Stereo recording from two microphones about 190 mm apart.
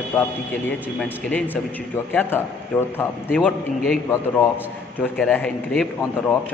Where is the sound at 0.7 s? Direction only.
10° left (ahead or behind).